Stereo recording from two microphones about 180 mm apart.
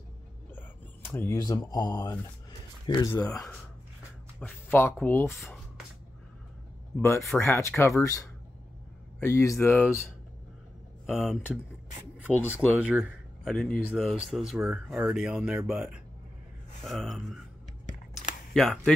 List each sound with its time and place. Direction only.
0.5 s speech: 10° left (ahead or behind)
3.3 s speech: 5° left (ahead or behind)
5.3 s speech: centre (ahead or behind)
7.2 s speech: centre (ahead or behind)
7.4 s speech: 15° left (ahead or behind)
11.1 s speech: 10° left (ahead or behind)
12.4 s speech: 5° right (ahead or behind)
18.5 s speech: centre (ahead or behind)